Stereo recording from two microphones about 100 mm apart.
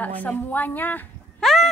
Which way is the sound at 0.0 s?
15° left (ahead or behind).